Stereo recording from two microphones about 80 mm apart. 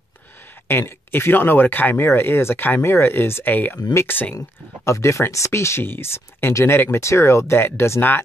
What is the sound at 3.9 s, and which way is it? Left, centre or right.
Speech, left.